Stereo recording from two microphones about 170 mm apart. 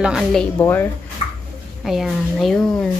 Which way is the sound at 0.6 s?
10° left (ahead or behind).